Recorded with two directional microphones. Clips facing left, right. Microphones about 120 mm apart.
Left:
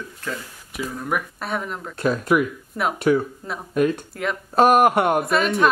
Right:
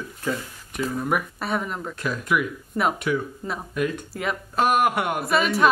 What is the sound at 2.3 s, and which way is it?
Speech, 40° left (ahead or behind).